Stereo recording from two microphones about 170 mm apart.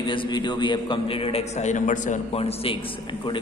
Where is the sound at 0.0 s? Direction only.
30° left (ahead or behind).